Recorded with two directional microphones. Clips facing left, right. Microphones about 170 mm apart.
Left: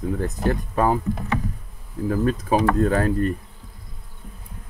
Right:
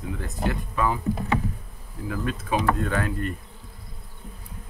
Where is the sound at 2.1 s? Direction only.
40° left (ahead or behind).